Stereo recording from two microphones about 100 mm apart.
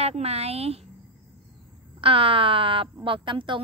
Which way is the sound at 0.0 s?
90° right.